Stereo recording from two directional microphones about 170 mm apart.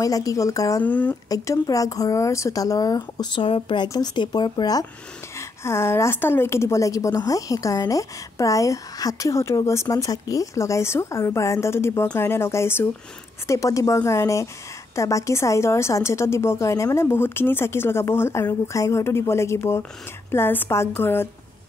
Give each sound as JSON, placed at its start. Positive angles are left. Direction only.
{"t": 0.0, "sound": "a woman's voice", "side_deg": 20}